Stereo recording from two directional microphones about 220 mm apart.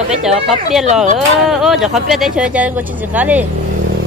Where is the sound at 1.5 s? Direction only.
Centre (ahead or behind).